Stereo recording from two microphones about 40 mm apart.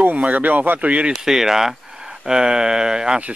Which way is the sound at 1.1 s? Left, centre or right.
Centre.